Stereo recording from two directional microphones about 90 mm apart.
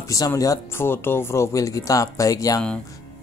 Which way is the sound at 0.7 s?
25° left (ahead or behind).